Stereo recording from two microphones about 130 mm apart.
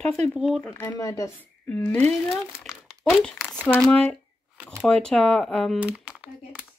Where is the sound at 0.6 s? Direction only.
20° left (ahead or behind).